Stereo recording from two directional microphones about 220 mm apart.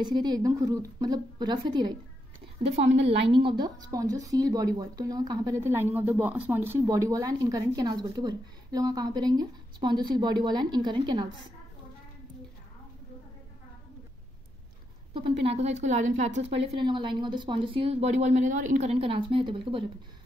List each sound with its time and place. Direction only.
0.0 s a woman's voice: 20° right (ahead or behind)
3.3 s speech: 20° right (ahead or behind)
15.1 s a woman's voice: 25° right (ahead or behind)